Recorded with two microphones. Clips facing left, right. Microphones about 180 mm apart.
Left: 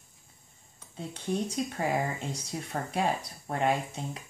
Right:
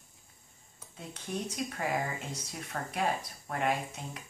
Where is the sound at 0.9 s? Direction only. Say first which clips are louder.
Left 6 dB; 30° left (ahead or behind).